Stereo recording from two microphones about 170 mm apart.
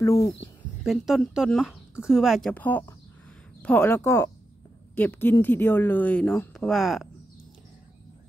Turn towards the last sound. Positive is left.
turn(degrees=0)  # may be behind; listen again after turning